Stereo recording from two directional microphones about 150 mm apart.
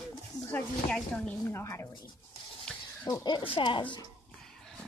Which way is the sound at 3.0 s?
30° left (ahead or behind).